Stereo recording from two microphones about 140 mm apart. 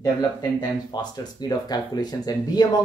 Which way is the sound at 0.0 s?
30° left (ahead or behind).